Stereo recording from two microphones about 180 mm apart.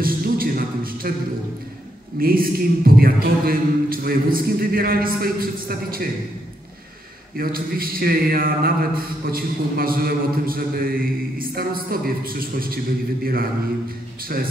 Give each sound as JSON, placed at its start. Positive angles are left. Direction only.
{"t": 0.0, "sound": "music", "side_deg": -55}
{"t": 2.1, "sound": "a man's voice", "side_deg": -55}
{"t": 7.3, "sound": "a man's voice", "side_deg": -55}